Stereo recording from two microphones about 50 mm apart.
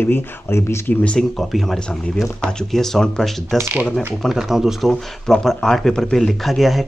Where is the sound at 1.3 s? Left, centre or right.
Centre.